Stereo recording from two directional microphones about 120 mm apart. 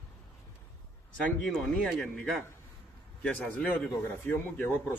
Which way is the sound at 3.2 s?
10° left (ahead or behind).